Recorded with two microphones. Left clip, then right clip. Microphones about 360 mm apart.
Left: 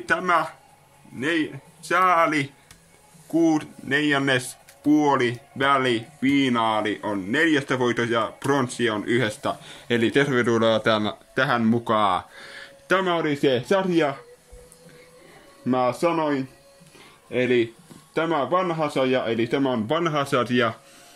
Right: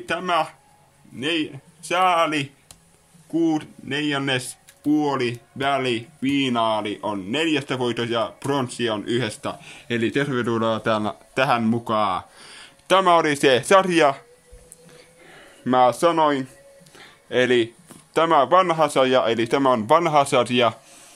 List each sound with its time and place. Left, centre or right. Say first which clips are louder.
0.0 s speech: left 1 dB; centre
16.0 s speech: right 4 dB; right
18.3 s speech: right 7 dB; centre